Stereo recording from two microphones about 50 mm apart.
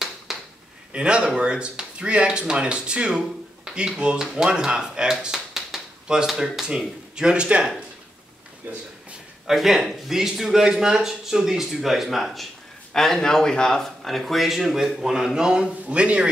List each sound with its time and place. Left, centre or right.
0.3 s a sound: centre
0.9 s a man's voice: centre
9.5 s a man's voice: centre
12.9 s speech: centre; by 16.3 s right